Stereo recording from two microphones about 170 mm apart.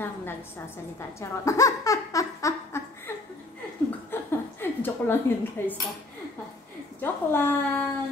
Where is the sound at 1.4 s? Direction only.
20° left (ahead or behind).